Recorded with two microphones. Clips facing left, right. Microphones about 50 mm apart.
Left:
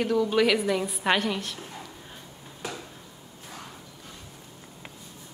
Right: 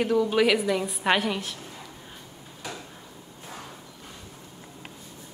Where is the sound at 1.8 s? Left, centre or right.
Centre.